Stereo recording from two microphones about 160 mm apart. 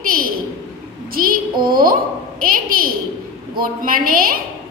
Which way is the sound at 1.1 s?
65° right (ahead or behind).